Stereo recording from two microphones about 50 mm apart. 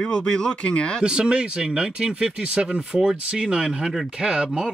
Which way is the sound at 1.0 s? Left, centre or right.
Centre.